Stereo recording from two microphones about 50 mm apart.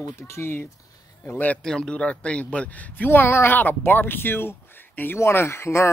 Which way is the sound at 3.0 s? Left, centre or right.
Left.